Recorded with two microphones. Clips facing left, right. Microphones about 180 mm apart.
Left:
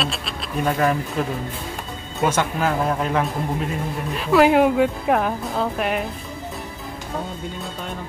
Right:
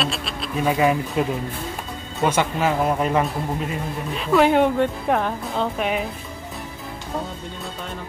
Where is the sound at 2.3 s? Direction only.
5° right (ahead or behind).